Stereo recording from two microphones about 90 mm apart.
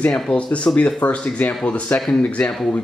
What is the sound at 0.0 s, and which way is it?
Speech, 10° left (ahead or behind).